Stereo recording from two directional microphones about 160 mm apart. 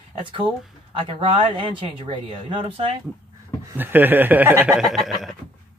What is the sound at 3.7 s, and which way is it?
Speech, 10° right (ahead or behind).